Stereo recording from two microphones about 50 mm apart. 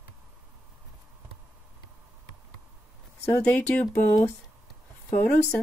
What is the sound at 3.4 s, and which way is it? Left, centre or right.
Speech, left.